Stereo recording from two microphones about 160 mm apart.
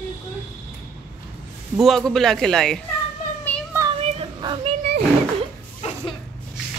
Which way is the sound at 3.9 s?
35° right (ahead or behind).